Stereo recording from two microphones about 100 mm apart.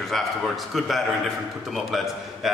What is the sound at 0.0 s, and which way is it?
A man's voice, centre (ahead or behind).